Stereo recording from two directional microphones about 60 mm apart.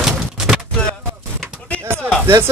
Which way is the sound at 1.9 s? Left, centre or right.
Right.